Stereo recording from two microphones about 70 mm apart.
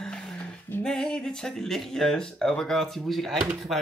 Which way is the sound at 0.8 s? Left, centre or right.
Centre.